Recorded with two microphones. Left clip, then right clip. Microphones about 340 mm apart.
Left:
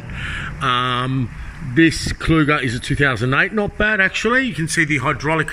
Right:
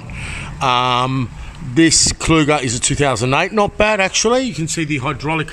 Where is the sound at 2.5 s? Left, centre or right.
Right.